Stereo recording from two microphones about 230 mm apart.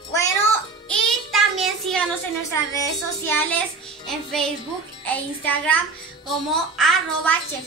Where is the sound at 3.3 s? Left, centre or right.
Centre.